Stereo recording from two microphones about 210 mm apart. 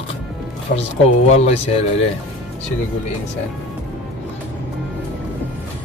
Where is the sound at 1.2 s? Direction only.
30° left (ahead or behind).